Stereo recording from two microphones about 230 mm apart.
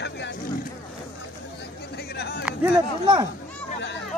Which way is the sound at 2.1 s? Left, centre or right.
Left.